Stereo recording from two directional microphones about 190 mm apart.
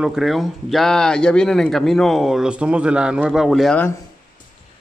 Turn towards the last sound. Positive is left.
turn(degrees=0)  # may be behind; listen again after turning